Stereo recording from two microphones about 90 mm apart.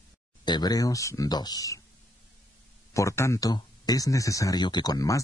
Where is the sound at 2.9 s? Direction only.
35° left (ahead or behind).